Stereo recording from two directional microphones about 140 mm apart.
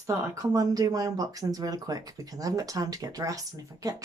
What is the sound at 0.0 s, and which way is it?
Speech, 25° right (ahead or behind).